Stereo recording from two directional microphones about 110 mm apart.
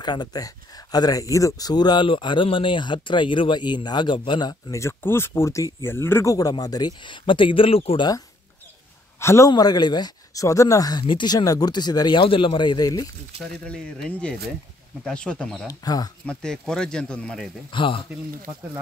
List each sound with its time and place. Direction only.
0.0 s speech: 40° left (ahead or behind)
4.7 s speech: 25° left (ahead or behind)
6.3 s speech: 35° left (ahead or behind); by 8.0 s 60° left (ahead or behind)
9.2 s speech: 25° left (ahead or behind)
9.5 s speech: 40° left (ahead or behind)
13.4 s speech: 5° left (ahead or behind)
15.7 s speech: 35° left (ahead or behind)
16.3 s speech: 5° left (ahead or behind)
17.6 s speech: 50° left (ahead or behind)